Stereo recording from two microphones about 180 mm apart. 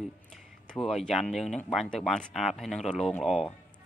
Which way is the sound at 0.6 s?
Centre (ahead or behind).